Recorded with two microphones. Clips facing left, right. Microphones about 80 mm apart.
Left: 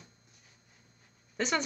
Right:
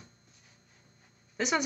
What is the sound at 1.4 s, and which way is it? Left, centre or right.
Speech, centre.